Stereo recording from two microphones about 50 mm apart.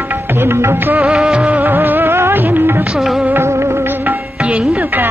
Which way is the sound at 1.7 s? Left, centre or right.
Right.